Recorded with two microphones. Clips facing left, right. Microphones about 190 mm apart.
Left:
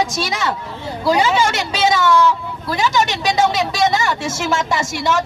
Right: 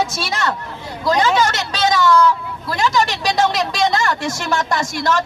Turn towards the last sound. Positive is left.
turn(degrees=5)  # may be behind; listen again after turning